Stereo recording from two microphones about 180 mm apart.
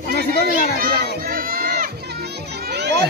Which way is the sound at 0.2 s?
60° right (ahead or behind).